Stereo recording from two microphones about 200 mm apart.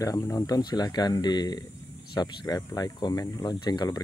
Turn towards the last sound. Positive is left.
turn(degrees=20)  # may be behind; listen again after turning